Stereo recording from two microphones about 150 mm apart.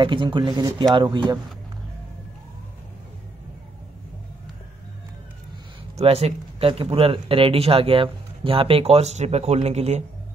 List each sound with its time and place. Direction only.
0.0 s speech: 35° right (ahead or behind)
5.9 s speech: 45° right (ahead or behind)